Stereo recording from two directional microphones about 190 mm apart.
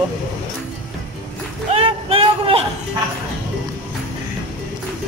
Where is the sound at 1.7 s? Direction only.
30° right (ahead or behind).